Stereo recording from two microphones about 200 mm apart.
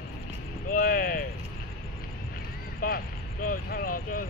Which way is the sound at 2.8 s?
50° left (ahead or behind).